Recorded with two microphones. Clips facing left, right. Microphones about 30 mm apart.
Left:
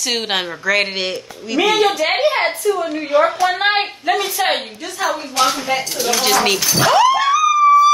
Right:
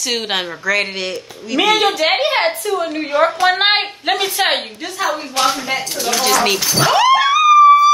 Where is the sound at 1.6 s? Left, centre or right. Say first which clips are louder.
Right 1 dB; right.